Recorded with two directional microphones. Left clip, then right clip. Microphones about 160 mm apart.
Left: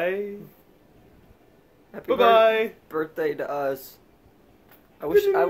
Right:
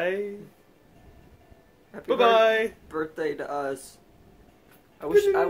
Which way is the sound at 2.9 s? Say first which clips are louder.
Left 3 dB; 25° left (ahead or behind).